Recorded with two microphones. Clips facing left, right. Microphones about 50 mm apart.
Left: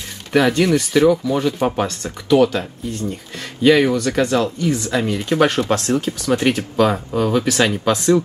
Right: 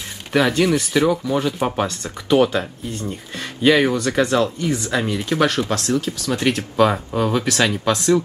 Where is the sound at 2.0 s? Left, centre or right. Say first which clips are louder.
Left 2 dB; right.